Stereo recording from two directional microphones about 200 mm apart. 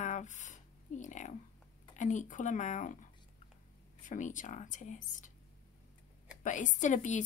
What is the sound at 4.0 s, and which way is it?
A woman's voice, 40° left (ahead or behind).